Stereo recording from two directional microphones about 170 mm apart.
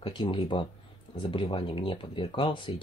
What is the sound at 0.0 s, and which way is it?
Speech, 30° left (ahead or behind).